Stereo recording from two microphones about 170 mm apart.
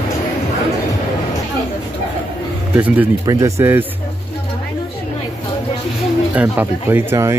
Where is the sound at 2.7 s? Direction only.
15° right (ahead or behind).